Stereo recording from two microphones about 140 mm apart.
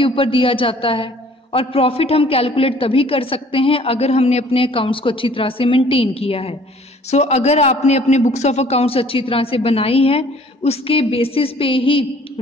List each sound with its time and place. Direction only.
0.0 s a man's voice: 40° left (ahead or behind)